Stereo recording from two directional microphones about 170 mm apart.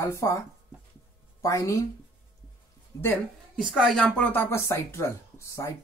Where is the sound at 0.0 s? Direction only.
15° left (ahead or behind).